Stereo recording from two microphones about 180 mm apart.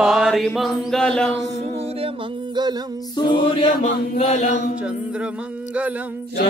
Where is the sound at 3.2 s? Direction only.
25° left (ahead or behind).